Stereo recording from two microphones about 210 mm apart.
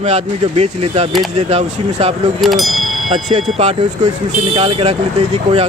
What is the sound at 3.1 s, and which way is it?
Speech, 30° right (ahead or behind).